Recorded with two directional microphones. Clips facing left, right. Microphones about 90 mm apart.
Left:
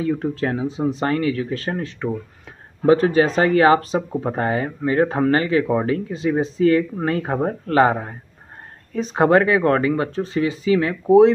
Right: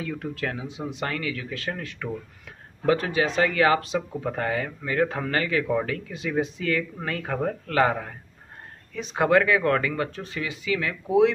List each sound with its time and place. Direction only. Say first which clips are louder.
0.0 s speech: left 9 dB; 30° left (ahead or behind)